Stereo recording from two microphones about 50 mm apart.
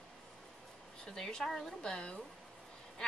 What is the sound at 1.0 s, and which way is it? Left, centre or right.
Speech, centre.